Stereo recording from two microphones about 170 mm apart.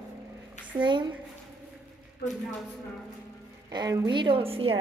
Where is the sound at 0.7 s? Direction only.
30° right (ahead or behind).